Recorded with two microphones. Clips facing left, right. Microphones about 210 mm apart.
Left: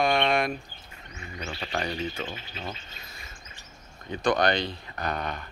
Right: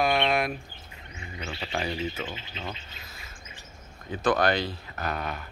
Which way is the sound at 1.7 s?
5° right (ahead or behind).